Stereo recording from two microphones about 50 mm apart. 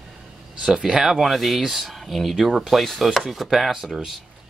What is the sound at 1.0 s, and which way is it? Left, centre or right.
Speech, centre.